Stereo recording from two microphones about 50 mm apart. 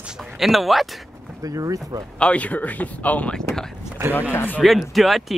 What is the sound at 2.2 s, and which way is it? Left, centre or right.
Speech, left.